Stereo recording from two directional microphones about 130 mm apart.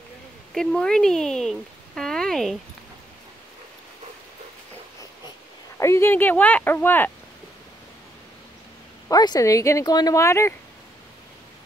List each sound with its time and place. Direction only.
0.6 s speech: 5° left (ahead or behind)
5.8 s speech: 20° left (ahead or behind)
9.1 s speech: 30° left (ahead or behind)